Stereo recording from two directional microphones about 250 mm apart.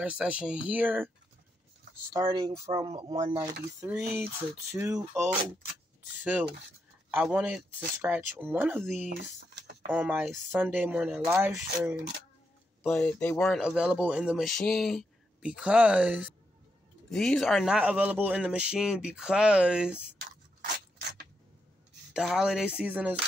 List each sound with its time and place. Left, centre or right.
0.0 s speech: centre
2.1 s speech: centre
9.1 s speech: right
9.8 s speech: centre
12.8 s speech: centre
22.1 s speech: centre